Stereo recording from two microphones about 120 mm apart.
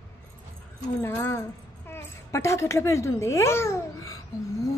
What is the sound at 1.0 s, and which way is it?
A child's voice, 20° left (ahead or behind).